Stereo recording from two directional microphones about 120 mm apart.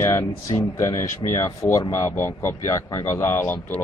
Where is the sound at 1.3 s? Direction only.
25° left (ahead or behind).